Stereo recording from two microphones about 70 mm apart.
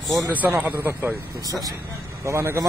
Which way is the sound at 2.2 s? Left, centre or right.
Right.